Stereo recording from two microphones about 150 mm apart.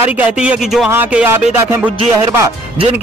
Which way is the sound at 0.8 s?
15° right (ahead or behind).